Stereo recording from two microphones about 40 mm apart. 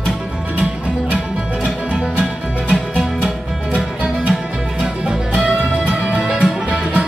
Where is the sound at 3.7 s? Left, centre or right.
Right.